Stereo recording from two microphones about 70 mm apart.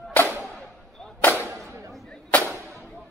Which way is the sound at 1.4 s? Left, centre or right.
Right.